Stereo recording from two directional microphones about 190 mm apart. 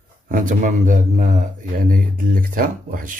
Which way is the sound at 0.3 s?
45° right (ahead or behind).